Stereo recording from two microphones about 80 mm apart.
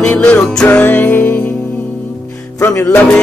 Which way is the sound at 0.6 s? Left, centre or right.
Left.